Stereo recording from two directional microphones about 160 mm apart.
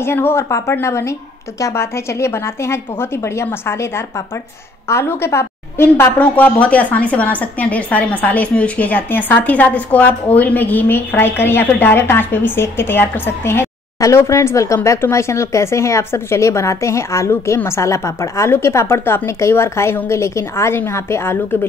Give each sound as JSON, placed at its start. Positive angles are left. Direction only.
{"t": 0.0, "sound": "a woman's voice", "side_deg": 15}